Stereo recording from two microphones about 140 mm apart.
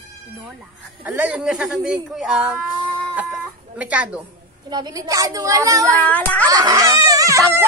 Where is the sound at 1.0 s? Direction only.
10° right (ahead or behind).